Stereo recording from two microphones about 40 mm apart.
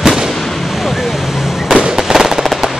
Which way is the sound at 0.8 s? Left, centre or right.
Centre.